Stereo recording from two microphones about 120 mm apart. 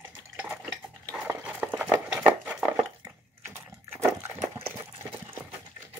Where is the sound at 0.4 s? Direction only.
15° right (ahead or behind).